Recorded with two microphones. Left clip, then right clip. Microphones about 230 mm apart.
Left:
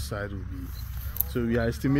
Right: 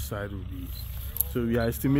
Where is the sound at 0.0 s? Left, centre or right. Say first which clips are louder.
Left 1 dB; centre.